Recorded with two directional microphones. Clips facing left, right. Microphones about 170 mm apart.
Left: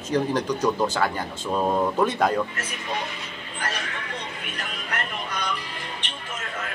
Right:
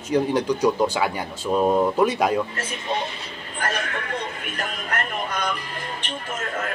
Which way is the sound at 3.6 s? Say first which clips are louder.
Right 5 dB; 50° right (ahead or behind).